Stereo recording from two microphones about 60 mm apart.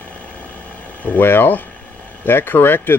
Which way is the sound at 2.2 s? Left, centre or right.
Left.